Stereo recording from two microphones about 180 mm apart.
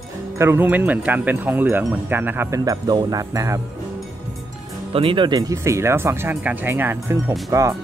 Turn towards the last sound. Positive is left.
turn(degrees=-15)  # may be behind; listen again after turning